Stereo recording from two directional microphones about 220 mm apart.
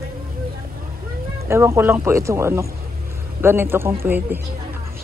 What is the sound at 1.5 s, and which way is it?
A woman's voice, 10° right (ahead or behind).